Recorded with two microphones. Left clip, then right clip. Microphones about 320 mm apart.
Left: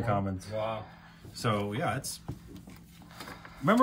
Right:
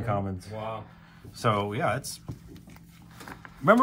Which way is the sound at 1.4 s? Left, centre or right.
Centre.